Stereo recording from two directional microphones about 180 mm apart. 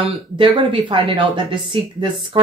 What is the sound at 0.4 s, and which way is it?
A woman's voice, 30° right (ahead or behind).